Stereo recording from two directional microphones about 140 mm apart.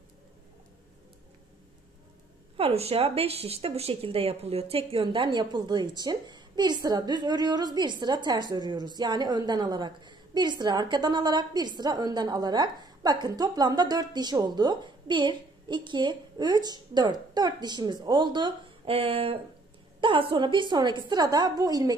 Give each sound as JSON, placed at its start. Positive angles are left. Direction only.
{"t": 2.5, "sound": "a woman's voice", "side_deg": -45}